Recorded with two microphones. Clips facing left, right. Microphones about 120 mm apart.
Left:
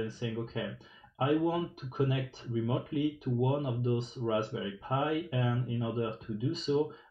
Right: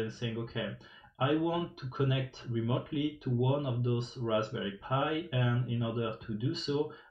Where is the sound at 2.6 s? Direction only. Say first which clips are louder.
Left 1 dB; 35° left (ahead or behind).